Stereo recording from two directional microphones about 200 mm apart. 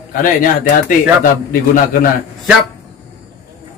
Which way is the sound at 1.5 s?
45° left (ahead or behind).